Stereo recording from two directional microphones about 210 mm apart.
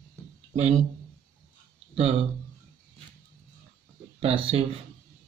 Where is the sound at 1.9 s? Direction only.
30° right (ahead or behind).